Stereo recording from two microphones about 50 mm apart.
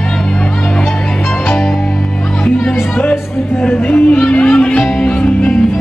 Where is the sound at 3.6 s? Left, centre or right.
Left.